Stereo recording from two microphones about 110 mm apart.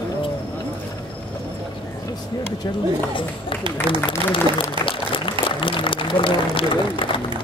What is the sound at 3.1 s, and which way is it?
Speech, 50° left (ahead or behind).